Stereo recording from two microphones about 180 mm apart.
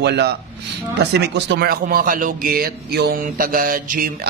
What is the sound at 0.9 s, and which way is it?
Speech, 70° right (ahead or behind).